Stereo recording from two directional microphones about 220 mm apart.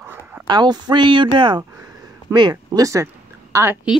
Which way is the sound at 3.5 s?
10° right (ahead or behind).